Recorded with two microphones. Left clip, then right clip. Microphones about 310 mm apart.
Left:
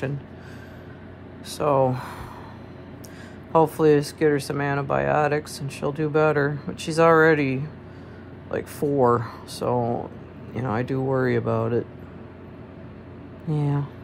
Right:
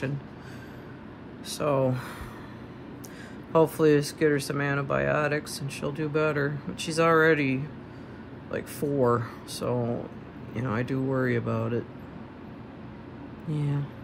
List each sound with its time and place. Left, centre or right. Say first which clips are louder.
1.5 s speech: left 5 dB; centre
3.5 s speech: left 3 dB; centre
13.5 s speech: left 6 dB; centre